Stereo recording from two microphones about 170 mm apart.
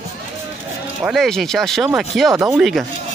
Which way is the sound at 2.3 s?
15° right (ahead or behind).